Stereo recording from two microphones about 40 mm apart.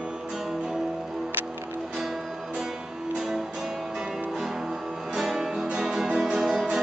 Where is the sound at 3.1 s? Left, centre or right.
Centre.